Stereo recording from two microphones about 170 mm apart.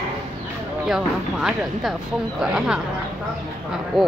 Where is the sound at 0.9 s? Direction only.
5° right (ahead or behind).